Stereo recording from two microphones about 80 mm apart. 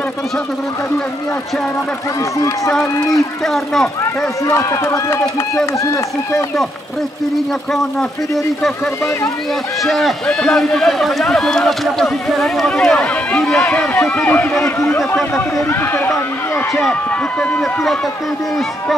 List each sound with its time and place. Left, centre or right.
3.4 s speech: centre
4.0 s speech: left
9.8 s a man's voice: centre
14.6 s speech: left
15.0 s speech: centre
15.7 s speech: left
17.4 s speech: centre